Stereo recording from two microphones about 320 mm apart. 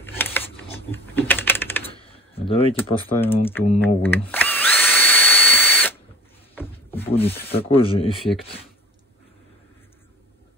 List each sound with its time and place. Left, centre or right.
0.0 s typing: centre
1.9 s door: centre
2.7 s speech: centre
3.8 s drill: centre
6.5 s a sound: centre
7.1 s speech: centre